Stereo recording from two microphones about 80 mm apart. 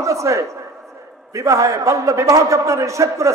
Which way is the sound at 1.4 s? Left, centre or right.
Right.